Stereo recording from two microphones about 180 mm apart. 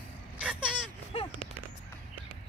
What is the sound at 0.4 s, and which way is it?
Vehicle, 5° right (ahead or behind).